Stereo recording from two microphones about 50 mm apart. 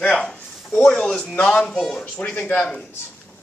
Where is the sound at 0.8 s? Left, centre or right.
Centre; by 2.7 s left.